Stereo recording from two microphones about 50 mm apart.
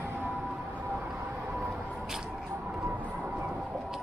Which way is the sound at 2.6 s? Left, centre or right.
Right.